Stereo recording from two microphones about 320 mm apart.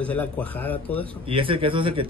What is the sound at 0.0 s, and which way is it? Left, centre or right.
A man's voice, centre.